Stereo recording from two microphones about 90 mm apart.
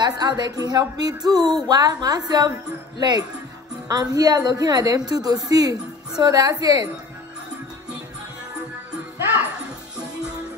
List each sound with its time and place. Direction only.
0.0 s a woman's voice: 50° right (ahead or behind)